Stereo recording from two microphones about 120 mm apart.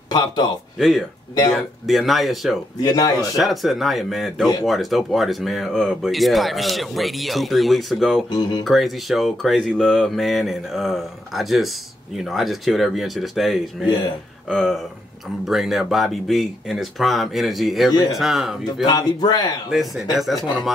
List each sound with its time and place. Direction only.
0.7 s speech: centre (ahead or behind)
2.8 s a man's voice: 35° left (ahead or behind)
3.3 s speech: centre (ahead or behind)
8.3 s a man's voice: 35° left (ahead or behind)
8.6 s speech: centre (ahead or behind)
18.9 s a man's voice: 30° left (ahead or behind)
19.7 s speech: centre (ahead or behind)